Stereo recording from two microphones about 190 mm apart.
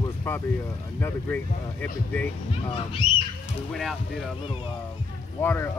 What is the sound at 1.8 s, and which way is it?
Speech, 10° left (ahead or behind).